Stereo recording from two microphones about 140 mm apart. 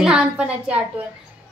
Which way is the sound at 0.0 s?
5° right (ahead or behind).